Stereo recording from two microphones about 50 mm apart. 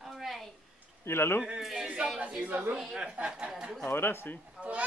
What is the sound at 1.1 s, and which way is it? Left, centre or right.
Speech, left.